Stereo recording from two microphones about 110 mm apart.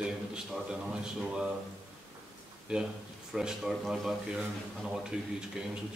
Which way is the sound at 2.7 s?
10° right (ahead or behind).